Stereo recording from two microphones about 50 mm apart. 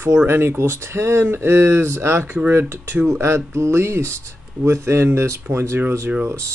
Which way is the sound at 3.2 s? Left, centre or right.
Right.